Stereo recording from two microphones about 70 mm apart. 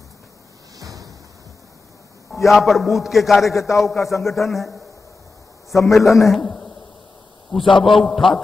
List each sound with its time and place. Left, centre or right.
0.7 s a sound: right
2.3 s a man's voice: centre
3.4 s a man's voice: left
4.1 s a man's voice: centre
5.7 s a man's voice: left
6.4 s a man's voice: centre